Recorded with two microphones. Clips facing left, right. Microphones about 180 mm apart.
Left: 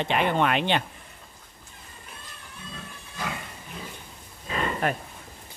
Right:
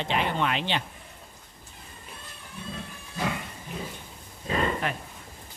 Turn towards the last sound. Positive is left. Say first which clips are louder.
# left 4 dB
turn(degrees=45)  # may be behind; listen again after turning